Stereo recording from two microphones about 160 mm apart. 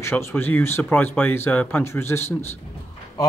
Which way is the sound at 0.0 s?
15° left (ahead or behind).